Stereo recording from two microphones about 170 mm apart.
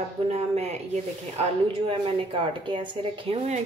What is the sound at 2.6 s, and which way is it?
Speech, 30° right (ahead or behind).